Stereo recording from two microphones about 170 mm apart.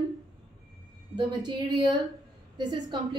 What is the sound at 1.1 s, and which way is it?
A woman's voice, 25° right (ahead or behind).